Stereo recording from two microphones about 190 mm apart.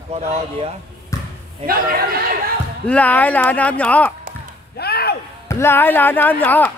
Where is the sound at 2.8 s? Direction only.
10° left (ahead or behind).